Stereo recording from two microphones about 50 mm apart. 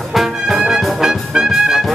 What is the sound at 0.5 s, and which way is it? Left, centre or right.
Brass instrument, centre.